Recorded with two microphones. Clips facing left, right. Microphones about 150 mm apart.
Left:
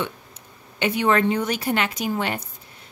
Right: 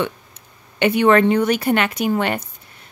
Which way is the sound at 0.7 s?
65° right (ahead or behind).